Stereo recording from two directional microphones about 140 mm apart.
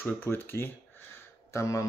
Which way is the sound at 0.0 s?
15° left (ahead or behind).